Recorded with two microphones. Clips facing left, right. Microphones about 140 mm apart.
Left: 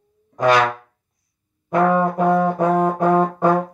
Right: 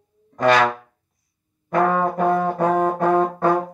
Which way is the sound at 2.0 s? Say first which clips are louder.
Left 2 dB; 15° left (ahead or behind).